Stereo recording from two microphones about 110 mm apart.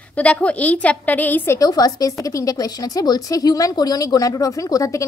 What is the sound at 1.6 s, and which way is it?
Speech, 35° left (ahead or behind).